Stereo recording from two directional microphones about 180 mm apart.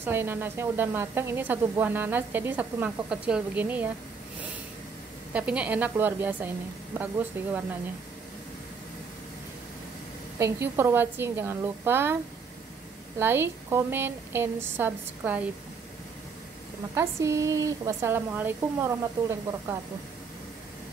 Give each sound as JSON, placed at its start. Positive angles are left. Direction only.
{"t": 0.0, "sound": "speech", "side_deg": -10}
{"t": 5.3, "sound": "speech", "side_deg": -5}
{"t": 10.4, "sound": "speech", "side_deg": -15}
{"t": 13.2, "sound": "speech", "side_deg": -10}
{"t": 16.9, "sound": "speech", "side_deg": -15}